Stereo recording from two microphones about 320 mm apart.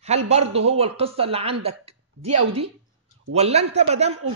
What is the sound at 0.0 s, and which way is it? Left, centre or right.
A man's voice, centre.